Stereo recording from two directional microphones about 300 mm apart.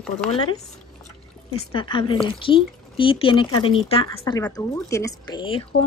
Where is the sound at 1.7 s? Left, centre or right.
Centre.